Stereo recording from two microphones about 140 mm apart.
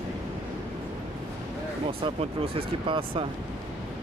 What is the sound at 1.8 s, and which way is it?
Speech, 45° right (ahead or behind).